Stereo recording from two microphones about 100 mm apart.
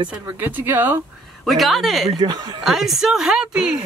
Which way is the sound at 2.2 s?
45° right (ahead or behind).